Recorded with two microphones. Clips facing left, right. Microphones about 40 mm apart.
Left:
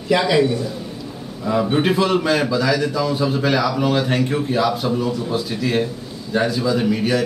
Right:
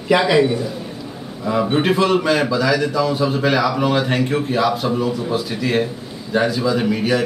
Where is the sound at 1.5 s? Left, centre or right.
Centre.